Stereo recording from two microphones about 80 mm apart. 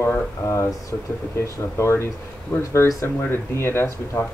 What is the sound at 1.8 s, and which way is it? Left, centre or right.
Speech, left.